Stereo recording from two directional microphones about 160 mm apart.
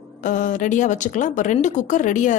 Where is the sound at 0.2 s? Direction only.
50° left (ahead or behind).